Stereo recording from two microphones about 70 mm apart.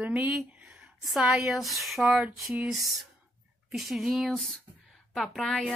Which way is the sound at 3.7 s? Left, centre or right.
Centre.